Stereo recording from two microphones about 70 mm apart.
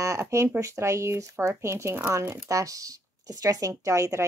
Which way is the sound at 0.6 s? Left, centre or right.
Right.